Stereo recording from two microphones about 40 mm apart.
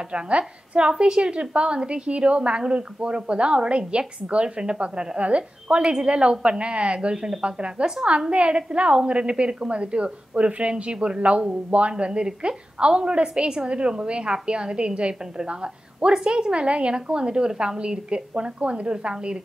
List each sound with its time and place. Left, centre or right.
0.1 s a woman's voice: right